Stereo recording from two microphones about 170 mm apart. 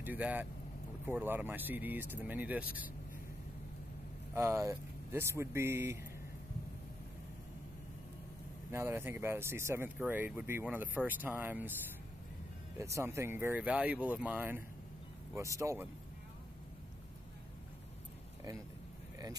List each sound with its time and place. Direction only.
0.0 s speech: 10° right (ahead or behind)
4.3 s speech: 15° right (ahead or behind)
8.7 s speech: 15° right (ahead or behind)
12.7 s speech: 15° right (ahead or behind)